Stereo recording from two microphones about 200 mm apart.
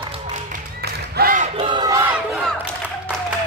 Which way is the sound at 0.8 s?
45° right (ahead or behind).